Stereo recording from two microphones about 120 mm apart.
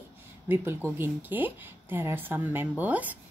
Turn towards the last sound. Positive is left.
turn(degrees=-15)  # may be behind; listen again after turning